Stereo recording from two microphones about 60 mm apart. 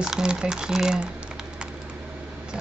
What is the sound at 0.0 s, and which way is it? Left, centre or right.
Speech, centre.